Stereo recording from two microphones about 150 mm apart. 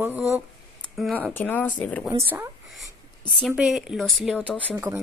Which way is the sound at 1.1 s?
10° left (ahead or behind).